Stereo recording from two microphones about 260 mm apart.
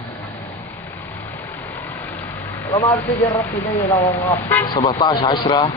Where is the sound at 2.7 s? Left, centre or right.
Centre.